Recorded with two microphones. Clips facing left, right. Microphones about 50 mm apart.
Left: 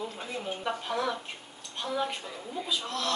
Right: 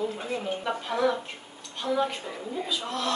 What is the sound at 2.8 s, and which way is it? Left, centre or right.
Speech, right.